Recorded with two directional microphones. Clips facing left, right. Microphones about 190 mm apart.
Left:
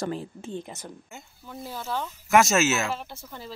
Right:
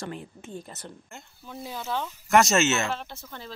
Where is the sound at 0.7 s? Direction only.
10° left (ahead or behind).